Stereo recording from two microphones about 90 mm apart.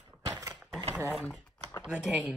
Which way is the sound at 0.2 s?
40° right (ahead or behind).